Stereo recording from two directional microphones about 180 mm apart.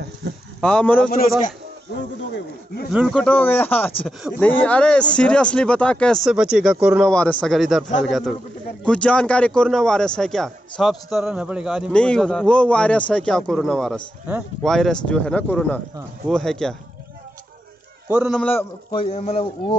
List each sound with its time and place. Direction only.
0.2 s a sound: 75° right (ahead or behind)
0.6 s a man's voice: 5° left (ahead or behind)
2.3 s a man's voice: 65° left (ahead or behind)
2.9 s a man's voice: centre (ahead or behind)
7.1 s a man's voice: 5° left (ahead or behind)
18.0 s a man's voice: 5° right (ahead or behind)
18.4 s speech: 10° left (ahead or behind)
18.9 s a man's voice: 30° left (ahead or behind)